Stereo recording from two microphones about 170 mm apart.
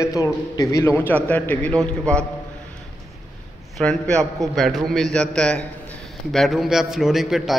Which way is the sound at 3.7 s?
5° left (ahead or behind).